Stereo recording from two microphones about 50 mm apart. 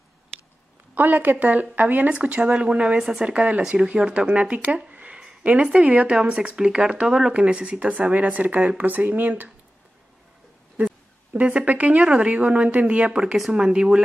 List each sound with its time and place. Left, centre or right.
0.9 s speech: right
2.1 s speech: right
3.0 s speech: centre
3.3 s speech: right
7.3 s speech: right
10.8 s music: right
11.3 s speech: right